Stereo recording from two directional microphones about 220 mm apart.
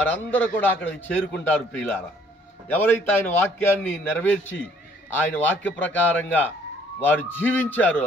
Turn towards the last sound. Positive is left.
turn(degrees=5)  # may be behind; listen again after turning